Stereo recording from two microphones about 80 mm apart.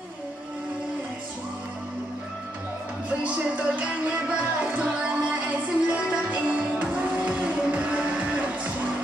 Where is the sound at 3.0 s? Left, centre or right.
Centre.